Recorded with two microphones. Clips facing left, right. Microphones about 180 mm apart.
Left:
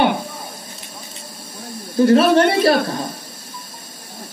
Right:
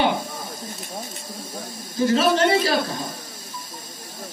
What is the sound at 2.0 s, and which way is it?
Speech, 60° left (ahead or behind).